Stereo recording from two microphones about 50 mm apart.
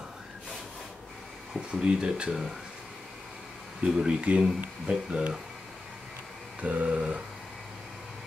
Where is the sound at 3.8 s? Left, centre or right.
Centre.